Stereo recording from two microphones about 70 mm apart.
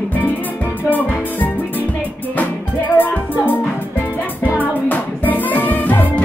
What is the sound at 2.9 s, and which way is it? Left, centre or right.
Music, left.